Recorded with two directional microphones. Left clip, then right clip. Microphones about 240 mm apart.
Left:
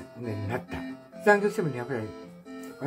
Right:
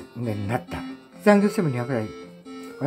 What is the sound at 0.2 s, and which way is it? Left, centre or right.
Speech, right.